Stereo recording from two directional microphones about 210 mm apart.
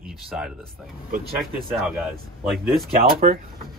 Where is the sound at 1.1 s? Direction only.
40° right (ahead or behind).